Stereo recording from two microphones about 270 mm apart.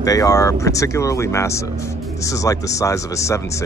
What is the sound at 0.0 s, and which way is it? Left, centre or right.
Speech, centre.